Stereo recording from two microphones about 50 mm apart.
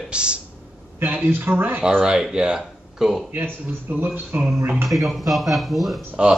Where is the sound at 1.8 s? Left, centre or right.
Right.